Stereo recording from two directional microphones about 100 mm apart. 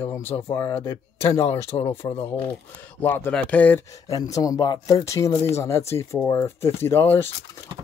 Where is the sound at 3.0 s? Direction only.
20° left (ahead or behind).